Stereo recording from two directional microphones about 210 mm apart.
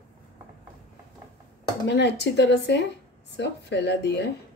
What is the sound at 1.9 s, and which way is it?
Speech, 55° left (ahead or behind).